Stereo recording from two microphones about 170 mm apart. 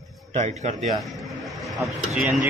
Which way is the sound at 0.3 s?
40° right (ahead or behind).